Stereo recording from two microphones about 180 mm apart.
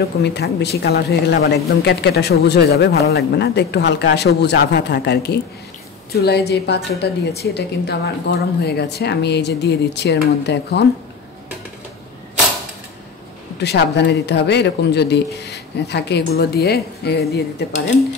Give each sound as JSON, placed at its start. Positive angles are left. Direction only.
{"t": 0.0, "sound": "speech", "side_deg": 65}
{"t": 13.6, "sound": "speech", "side_deg": 70}